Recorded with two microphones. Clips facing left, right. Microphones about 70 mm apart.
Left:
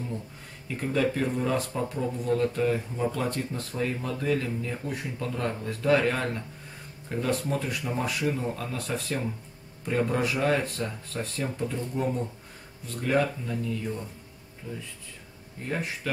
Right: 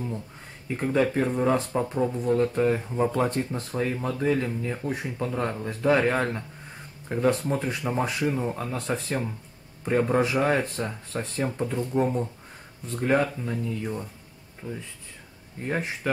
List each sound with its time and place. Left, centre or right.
0.7 s speech: right